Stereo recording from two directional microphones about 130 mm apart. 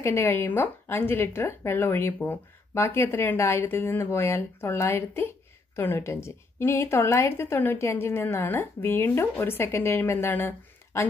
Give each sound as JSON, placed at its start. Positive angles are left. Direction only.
{"t": 0.0, "sound": "a woman's voice", "side_deg": 20}